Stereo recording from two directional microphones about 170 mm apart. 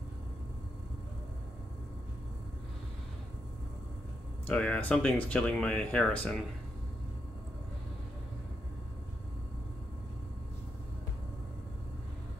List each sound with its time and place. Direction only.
4.5 s speech: 10° left (ahead or behind)